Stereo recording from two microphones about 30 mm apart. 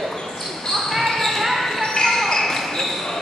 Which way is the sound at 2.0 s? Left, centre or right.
Centre.